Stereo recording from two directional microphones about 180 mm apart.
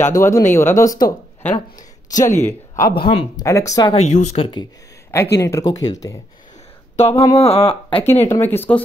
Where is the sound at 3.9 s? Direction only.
40° left (ahead or behind).